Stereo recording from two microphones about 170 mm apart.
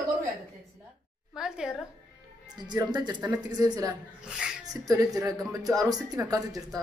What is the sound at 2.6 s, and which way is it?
Speech, 25° right (ahead or behind).